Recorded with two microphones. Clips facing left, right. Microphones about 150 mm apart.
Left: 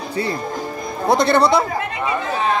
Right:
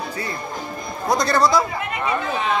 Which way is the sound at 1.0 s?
25° left (ahead or behind).